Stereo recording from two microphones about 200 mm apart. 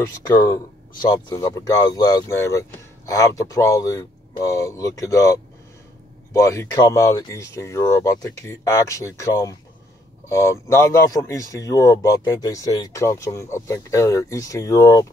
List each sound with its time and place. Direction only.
0.0 s speech: 15° left (ahead or behind)